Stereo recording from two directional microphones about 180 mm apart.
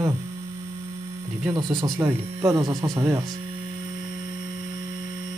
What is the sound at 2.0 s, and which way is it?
Speech, 15° right (ahead or behind).